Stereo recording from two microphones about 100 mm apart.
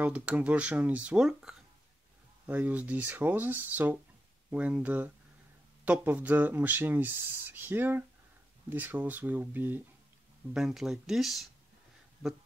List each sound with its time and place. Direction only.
0.0 s speech: 15° right (ahead or behind)
10.5 s speech: 5° right (ahead or behind)